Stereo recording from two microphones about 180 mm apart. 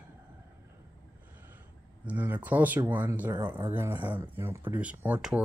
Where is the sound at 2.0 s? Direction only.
10° right (ahead or behind).